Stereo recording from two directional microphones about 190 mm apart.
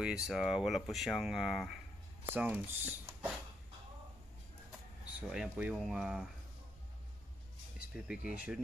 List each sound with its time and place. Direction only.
0.0 s speech: centre (ahead or behind)
5.0 s speech: 5° right (ahead or behind)
7.9 s speech: 5° right (ahead or behind)